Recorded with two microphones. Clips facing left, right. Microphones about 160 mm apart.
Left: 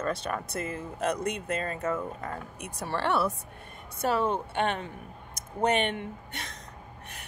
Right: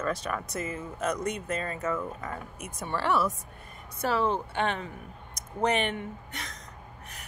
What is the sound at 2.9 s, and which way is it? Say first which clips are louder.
Speech: even; 60° left (ahead or behind).